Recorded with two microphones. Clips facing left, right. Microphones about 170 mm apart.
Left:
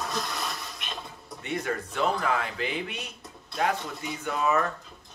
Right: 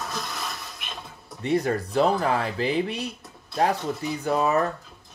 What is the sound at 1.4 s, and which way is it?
Speech, 35° right (ahead or behind).